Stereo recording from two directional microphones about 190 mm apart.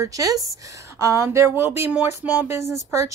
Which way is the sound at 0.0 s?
20° right (ahead or behind).